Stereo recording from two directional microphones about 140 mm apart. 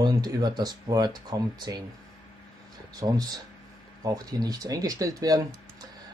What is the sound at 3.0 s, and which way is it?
Speech, 25° right (ahead or behind).